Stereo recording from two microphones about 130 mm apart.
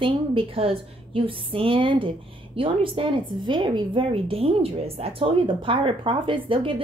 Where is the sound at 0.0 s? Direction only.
40° right (ahead or behind).